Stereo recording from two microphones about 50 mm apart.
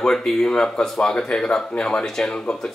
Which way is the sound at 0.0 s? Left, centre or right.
Centre.